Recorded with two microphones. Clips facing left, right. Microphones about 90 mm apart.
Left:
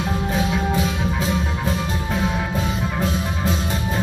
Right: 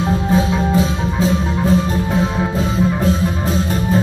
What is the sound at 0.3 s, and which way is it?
Music, 30° right (ahead or behind).